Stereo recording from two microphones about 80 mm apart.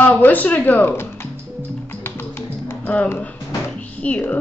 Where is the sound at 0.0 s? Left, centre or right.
Left.